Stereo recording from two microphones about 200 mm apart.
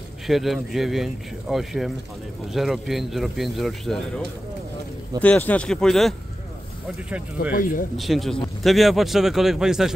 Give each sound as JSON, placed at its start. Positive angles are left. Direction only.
{"t": 0.3, "sound": "speech", "side_deg": 0}
{"t": 7.5, "sound": "speech", "side_deg": 45}
{"t": 8.0, "sound": "speech", "side_deg": 0}